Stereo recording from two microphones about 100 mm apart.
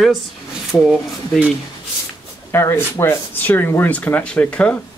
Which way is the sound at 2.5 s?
25° left (ahead or behind).